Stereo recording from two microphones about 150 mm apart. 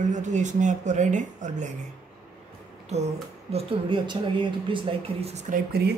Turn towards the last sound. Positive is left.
turn(degrees=-90)